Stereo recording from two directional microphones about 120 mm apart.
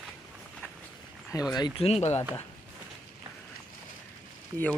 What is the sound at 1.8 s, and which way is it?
Speech, 60° left (ahead or behind).